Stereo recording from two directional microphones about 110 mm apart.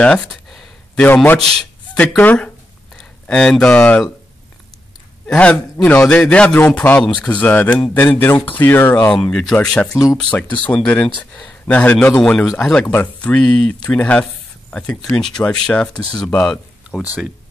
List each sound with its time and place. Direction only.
0.0 s a sound: 10° left (ahead or behind)
1.0 s speech: 15° left (ahead or behind)
5.2 s speech: 10° left (ahead or behind)
9.2 s speech: 5° left (ahead or behind)
12.8 s speech: 15° left (ahead or behind)